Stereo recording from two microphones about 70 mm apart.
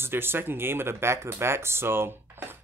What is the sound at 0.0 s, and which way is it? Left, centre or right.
Speech, right.